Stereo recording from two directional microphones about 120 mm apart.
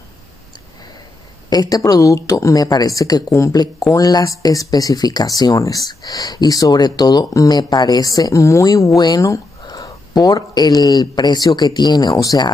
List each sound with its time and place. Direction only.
1.5 s speech: 30° left (ahead or behind)